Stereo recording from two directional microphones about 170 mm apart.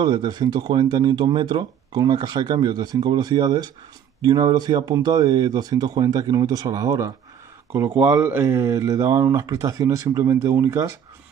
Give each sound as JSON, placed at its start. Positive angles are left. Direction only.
{"t": 0.0, "sound": "speech", "side_deg": -25}